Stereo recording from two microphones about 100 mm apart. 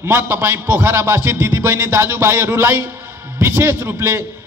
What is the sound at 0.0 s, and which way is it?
A man's voice, 25° right (ahead or behind).